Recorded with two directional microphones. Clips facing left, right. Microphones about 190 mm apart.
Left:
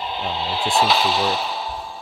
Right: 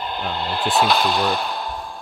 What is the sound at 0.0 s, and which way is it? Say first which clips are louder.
Speech: even; centre (ahead or behind).